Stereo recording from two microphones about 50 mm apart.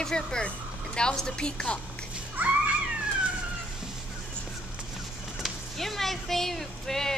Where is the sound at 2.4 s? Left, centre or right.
Right.